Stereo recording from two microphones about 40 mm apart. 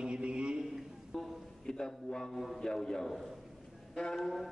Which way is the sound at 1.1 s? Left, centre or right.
Centre.